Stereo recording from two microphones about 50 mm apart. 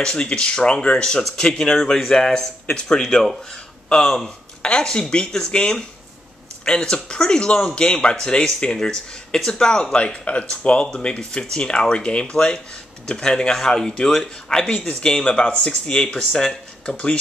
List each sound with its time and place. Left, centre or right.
0.0 s speech: centre